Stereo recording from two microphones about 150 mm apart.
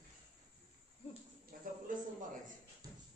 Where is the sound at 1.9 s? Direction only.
65° right (ahead or behind).